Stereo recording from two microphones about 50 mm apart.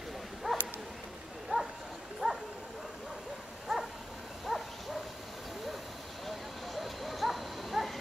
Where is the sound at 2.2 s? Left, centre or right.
Centre.